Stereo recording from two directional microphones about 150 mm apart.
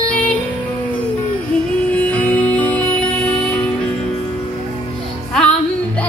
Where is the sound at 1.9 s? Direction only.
10° left (ahead or behind).